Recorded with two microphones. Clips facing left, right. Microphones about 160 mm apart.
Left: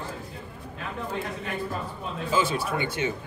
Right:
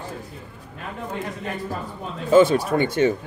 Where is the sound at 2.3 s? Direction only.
50° right (ahead or behind).